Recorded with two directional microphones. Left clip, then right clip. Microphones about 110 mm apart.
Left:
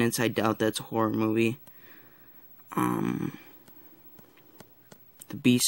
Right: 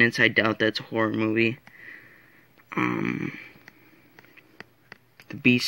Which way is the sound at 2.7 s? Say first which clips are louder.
Right 2 dB; 30° left (ahead or behind).